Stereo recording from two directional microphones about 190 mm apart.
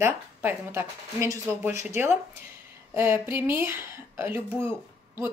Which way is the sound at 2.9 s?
10° right (ahead or behind).